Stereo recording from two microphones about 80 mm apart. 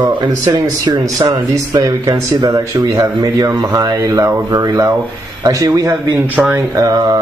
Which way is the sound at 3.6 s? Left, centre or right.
Right.